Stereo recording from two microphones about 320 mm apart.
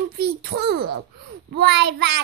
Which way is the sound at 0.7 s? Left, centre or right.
Right.